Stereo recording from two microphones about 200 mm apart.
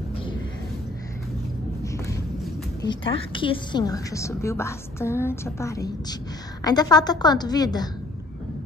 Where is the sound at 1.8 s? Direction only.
15° left (ahead or behind).